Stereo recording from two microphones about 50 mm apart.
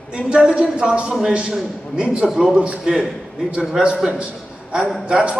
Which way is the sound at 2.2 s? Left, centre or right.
Centre.